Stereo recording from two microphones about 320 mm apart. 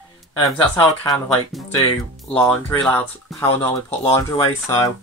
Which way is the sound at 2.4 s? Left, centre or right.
Centre.